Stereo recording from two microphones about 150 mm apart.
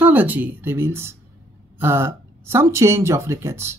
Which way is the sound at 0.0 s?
10° right (ahead or behind).